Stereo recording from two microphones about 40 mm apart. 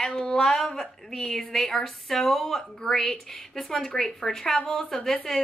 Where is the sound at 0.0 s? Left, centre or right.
Left.